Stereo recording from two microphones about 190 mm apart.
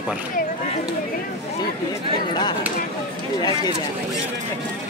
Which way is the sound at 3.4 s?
25° left (ahead or behind).